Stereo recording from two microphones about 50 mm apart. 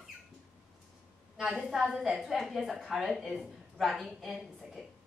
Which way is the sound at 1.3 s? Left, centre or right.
Centre.